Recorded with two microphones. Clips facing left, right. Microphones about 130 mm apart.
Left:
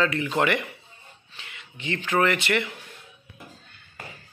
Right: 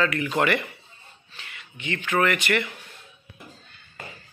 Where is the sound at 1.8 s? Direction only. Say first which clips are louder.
Even; 35° left (ahead or behind).